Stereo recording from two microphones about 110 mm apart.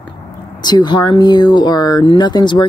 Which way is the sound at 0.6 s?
40° left (ahead or behind).